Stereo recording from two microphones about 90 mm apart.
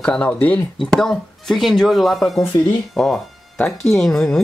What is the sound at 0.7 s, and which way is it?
Speech, centre (ahead or behind).